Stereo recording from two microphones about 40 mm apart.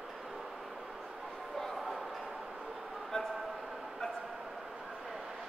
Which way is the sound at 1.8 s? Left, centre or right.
Centre.